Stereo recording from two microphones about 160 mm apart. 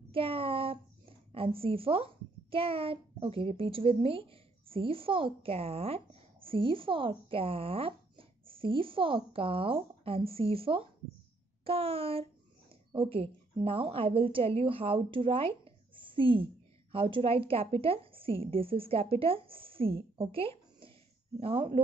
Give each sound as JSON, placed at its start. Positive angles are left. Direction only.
{"t": 0.1, "sound": "a child's voice", "side_deg": -35}